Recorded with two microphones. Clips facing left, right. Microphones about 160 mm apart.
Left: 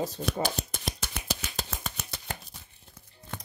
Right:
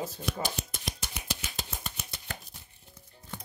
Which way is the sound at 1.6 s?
90° left.